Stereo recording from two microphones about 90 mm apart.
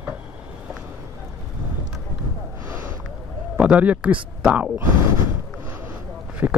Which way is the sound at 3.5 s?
15° right (ahead or behind).